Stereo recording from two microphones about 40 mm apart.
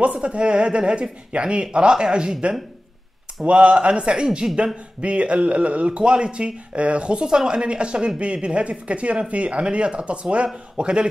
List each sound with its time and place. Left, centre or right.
0.0 s speech: right
5.9 s speech: right